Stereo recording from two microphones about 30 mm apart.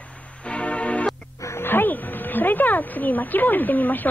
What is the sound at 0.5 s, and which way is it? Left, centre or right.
Music, left.